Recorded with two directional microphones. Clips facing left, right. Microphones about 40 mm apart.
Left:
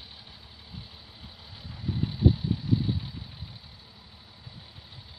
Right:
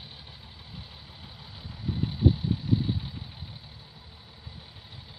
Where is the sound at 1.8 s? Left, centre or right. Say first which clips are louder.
Even; centre.